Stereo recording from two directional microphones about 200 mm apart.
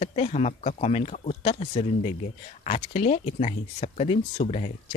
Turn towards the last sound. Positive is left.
turn(degrees=35)  # may be behind; listen again after turning